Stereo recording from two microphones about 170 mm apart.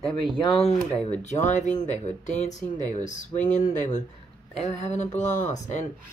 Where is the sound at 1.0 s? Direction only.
45° left (ahead or behind).